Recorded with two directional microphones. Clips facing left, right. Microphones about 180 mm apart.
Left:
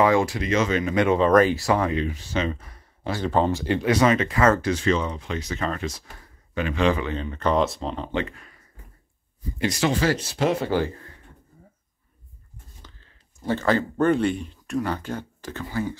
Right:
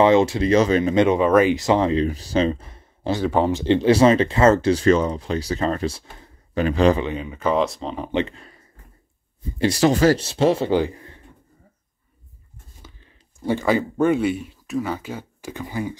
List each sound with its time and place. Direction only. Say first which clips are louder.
0.0 s speech: right 4 dB; 25° right (ahead or behind)
3.2 s speech: right 1 dB; 10° right (ahead or behind)
3.6 s speech: right 9 dB; 25° right (ahead or behind)
4.8 s speech: right 6 dB; 40° right (ahead or behind); by 6.6 s 25° right (ahead or behind)
6.6 s speech: right 5 dB; 40° right (ahead or behind)
7.2 s speech: right 1 dB; 10° right (ahead or behind)
8.0 s speech: right 7 dB; 20° right (ahead or behind); by 10.2 s 40° right (ahead or behind)
10.2 s speech: right 5 dB; 25° right (ahead or behind)
12.8 s speech: right 3 dB; 15° right (ahead or behind)